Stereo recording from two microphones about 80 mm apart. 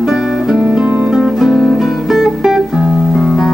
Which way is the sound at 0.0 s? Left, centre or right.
Centre.